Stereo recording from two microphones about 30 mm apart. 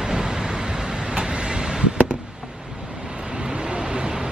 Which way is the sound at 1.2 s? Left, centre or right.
Right.